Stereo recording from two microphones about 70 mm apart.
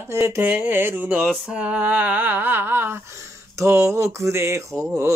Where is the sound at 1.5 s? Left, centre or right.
Centre.